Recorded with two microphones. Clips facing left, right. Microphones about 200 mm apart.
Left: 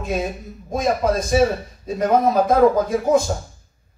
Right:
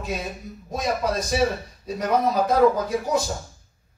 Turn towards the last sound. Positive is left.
turn(degrees=50)  # may be behind; listen again after turning